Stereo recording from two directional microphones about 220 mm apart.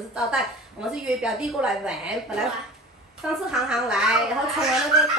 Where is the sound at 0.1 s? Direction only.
5° right (ahead or behind).